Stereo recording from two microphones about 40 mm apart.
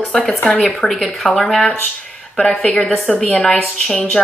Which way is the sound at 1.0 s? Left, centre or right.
Centre.